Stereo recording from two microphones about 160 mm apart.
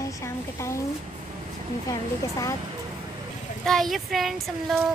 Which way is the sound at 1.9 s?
20° left (ahead or behind).